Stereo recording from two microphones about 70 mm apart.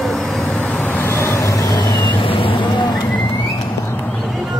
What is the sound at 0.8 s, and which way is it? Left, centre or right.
Vehicle, left.